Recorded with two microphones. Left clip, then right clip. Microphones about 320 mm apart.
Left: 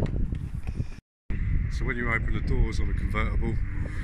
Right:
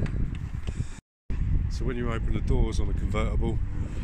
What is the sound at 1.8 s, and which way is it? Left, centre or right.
Speech, centre.